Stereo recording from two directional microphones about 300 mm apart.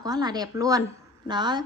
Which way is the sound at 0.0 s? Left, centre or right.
Centre.